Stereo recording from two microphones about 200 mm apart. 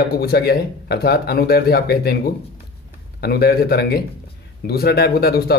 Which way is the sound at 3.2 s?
50° left (ahead or behind).